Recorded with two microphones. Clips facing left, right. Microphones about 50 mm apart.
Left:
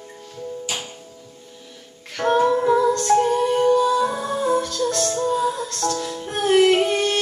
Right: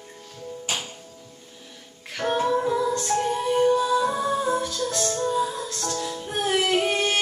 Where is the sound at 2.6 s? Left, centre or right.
Left.